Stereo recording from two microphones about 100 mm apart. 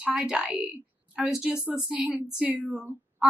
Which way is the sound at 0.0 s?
10° right (ahead or behind).